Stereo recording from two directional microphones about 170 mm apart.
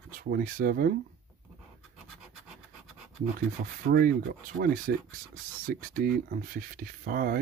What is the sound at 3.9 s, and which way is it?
Speech, 60° right (ahead or behind).